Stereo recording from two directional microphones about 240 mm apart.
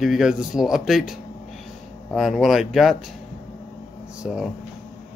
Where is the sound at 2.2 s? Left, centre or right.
Centre.